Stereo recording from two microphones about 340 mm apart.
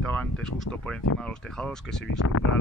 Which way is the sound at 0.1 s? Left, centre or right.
Centre.